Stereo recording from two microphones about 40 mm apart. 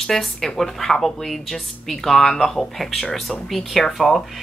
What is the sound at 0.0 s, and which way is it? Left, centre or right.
Speech, centre.